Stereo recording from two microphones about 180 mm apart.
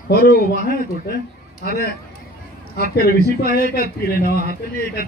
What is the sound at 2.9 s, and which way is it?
A man's voice, 60° left (ahead or behind).